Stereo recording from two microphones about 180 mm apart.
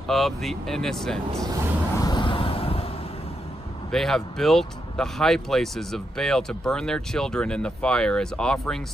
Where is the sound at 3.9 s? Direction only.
Centre (ahead or behind).